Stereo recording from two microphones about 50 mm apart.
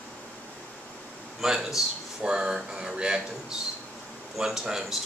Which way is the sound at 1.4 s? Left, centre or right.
Centre.